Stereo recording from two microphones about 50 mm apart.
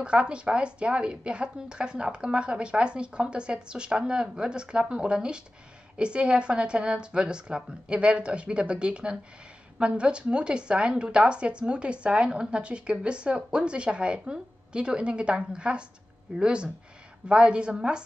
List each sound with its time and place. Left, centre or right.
0.0 s a woman's voice: right